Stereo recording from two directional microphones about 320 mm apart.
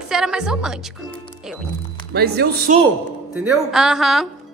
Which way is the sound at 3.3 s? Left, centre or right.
Centre.